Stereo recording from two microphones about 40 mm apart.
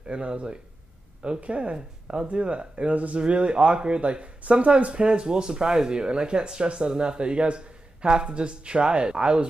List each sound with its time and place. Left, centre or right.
0.0 s speech: right
3.2 s speech: right